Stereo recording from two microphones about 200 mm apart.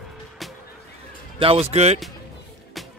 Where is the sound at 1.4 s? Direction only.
30° right (ahead or behind).